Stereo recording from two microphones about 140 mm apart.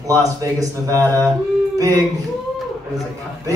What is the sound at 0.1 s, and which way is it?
Speech, 25° right (ahead or behind).